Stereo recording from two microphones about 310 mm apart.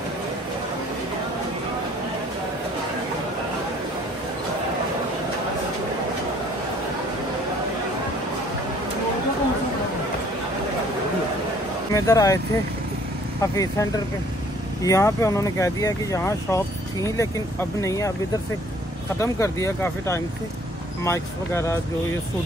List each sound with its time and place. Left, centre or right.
11.9 s speech: centre
13.4 s speech: centre
19.1 s speech: centre